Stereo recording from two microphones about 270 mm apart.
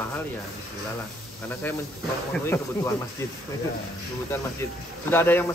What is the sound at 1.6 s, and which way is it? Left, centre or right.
Speech, centre.